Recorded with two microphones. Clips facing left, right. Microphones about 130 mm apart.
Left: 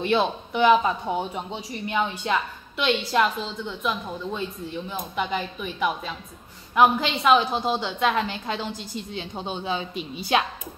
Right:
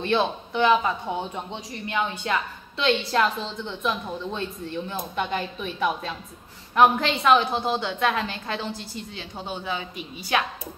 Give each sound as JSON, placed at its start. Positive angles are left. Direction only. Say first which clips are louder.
{"t": 0.0, "sound": "a man's voice", "louder": "left 1 dB", "side_deg": 15}
{"t": 7.2, "sound": "a woman's voice", "louder": "left 1 dB", "side_deg": 15}